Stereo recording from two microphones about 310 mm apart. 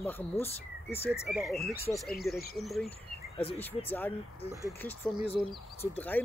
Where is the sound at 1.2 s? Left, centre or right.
Centre.